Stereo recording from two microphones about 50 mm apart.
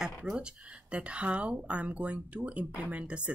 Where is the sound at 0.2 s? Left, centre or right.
Centre.